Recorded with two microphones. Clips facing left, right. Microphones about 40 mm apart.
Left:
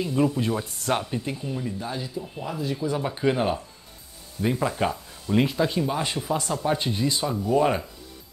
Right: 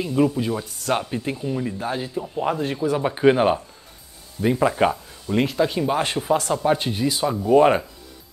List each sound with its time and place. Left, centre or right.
0.0 s speech: centre
0.3 s speech: centre
0.9 s speech: centre
1.8 s speech: right
3.0 s speech: right